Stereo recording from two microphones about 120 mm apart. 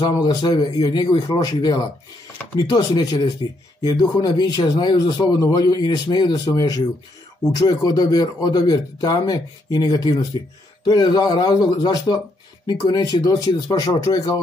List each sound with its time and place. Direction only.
0.0 s speech: 30° left (ahead or behind)